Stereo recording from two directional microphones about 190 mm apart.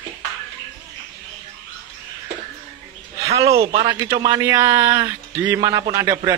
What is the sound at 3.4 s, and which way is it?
Speech, 30° right (ahead or behind).